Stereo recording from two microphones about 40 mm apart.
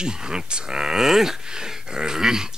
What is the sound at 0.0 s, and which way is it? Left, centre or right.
Speech, centre.